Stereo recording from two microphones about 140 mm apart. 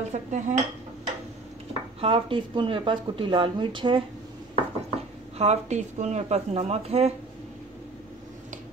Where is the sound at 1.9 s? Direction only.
40° right (ahead or behind).